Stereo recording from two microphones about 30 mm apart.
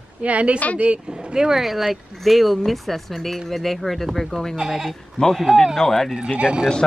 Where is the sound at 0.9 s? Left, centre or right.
Right.